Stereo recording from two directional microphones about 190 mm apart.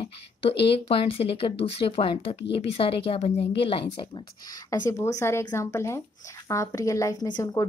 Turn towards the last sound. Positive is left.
turn(degrees=20)  # may be behind; listen again after turning